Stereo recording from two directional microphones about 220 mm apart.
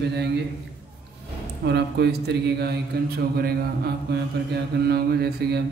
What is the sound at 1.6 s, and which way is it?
A man's voice, 50° right (ahead or behind).